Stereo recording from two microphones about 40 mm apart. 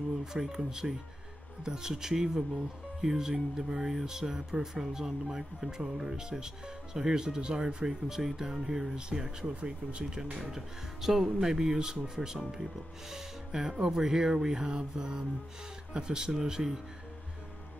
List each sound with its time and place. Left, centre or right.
0.2 s speech: centre
10.3 s speech: centre